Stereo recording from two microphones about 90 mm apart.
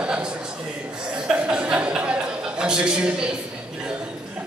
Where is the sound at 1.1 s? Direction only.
10° right (ahead or behind).